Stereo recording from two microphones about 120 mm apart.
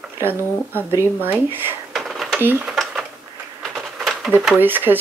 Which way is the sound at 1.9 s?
Centre (ahead or behind).